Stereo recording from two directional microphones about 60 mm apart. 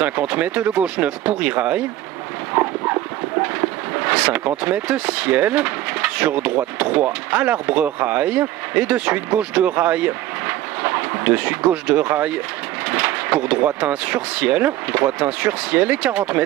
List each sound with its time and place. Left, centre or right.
0.0 s speech: right
2.5 s a sound: right
4.1 s speech: right